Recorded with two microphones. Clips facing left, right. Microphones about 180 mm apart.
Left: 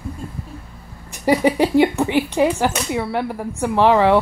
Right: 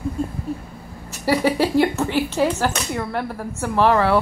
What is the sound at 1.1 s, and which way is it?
Speech, 15° left (ahead or behind).